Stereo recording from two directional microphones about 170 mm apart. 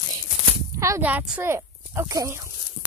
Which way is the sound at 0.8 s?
15° right (ahead or behind).